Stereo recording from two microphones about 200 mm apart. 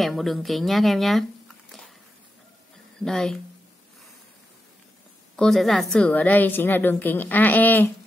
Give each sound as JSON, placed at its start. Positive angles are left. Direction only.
{"t": 0.0, "sound": "speech", "side_deg": 0}
{"t": 3.0, "sound": "speech", "side_deg": 5}
{"t": 5.3, "sound": "a woman's voice", "side_deg": 0}